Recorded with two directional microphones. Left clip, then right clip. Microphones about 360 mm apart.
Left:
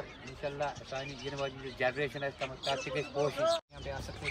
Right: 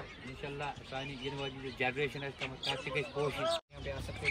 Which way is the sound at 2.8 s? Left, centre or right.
Left.